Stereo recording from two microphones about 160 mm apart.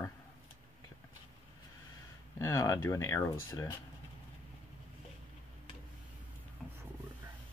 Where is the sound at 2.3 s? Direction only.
20° left (ahead or behind).